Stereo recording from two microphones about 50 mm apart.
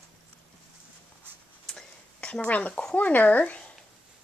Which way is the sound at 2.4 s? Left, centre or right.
Left.